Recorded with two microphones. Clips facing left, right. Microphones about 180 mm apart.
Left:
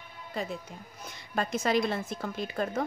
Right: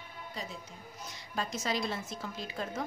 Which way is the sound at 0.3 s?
55° left (ahead or behind).